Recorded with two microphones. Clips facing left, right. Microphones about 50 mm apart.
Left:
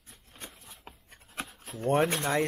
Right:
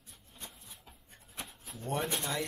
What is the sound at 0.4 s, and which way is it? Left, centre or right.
Writing, left.